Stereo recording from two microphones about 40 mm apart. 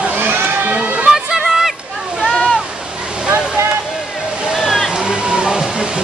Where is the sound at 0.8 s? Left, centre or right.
Right.